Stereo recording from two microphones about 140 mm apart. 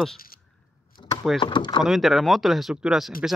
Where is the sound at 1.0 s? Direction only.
30° left (ahead or behind).